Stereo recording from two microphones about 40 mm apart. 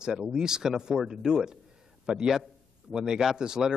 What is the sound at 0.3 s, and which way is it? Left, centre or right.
A man's voice, centre.